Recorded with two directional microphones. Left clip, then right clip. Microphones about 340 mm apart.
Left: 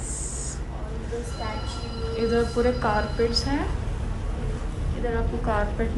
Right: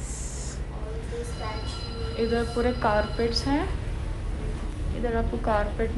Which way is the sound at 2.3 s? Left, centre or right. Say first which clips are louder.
Left 5 dB; centre.